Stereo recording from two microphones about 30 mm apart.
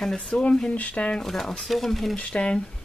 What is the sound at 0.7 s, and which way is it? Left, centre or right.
Speech, left.